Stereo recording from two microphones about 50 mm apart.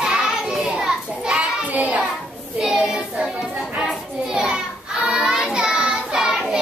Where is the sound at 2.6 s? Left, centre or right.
Centre.